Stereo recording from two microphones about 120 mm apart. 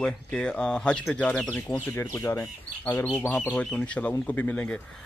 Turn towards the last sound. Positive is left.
turn(degrees=15)  # may be behind; listen again after turning